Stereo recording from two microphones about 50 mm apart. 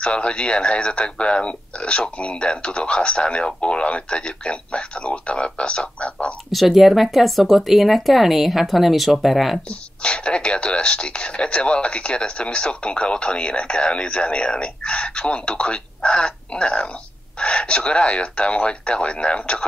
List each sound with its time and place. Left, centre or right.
0.0 s speech: left
6.5 s speech: centre
9.7 s speech: centre